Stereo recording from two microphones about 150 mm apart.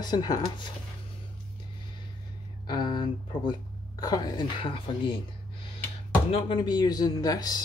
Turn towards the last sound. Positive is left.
turn(degrees=25)  # may be behind; listen again after turning